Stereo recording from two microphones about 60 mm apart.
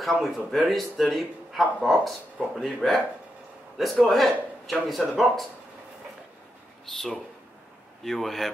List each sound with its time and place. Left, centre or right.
0.2 s speech: centre
6.9 s speech: centre